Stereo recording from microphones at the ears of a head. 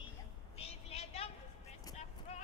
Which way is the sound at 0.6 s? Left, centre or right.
Left.